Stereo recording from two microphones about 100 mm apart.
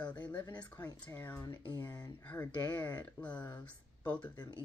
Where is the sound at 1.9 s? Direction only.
40° left (ahead or behind).